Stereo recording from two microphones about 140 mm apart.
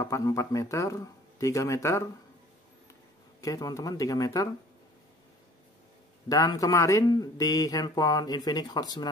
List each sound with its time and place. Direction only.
0.0 s a man's voice: 25° left (ahead or behind)
3.3 s a man's voice: 25° left (ahead or behind)
6.2 s a man's voice: 25° left (ahead or behind)